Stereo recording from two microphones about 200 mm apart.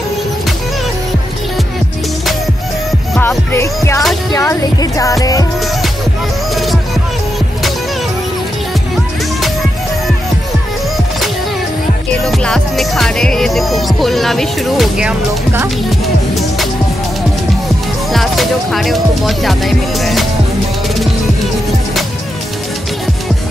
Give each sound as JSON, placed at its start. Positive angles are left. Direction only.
{"t": 3.2, "sound": "music", "side_deg": 10}
{"t": 6.5, "sound": "music", "side_deg": 0}
{"t": 12.3, "sound": "music", "side_deg": 0}
{"t": 18.1, "sound": "music", "side_deg": 0}